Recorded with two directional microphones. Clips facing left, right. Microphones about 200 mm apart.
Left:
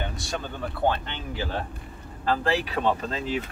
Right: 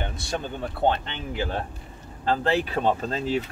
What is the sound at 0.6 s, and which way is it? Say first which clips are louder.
Speech: right 1 dB; 25° right (ahead or behind).